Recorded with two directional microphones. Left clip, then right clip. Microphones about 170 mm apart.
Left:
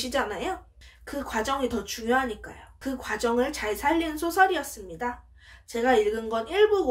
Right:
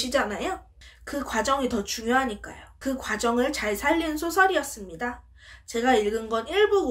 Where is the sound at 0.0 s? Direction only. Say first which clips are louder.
Right 2 dB; 25° right (ahead or behind).